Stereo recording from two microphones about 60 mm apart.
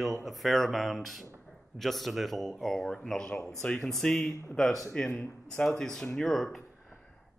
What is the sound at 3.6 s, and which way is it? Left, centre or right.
Speech, centre.